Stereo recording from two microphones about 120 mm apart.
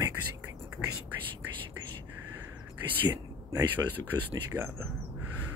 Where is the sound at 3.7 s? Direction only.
15° right (ahead or behind).